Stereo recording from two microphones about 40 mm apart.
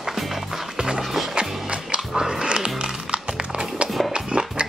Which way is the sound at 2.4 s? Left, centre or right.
Right.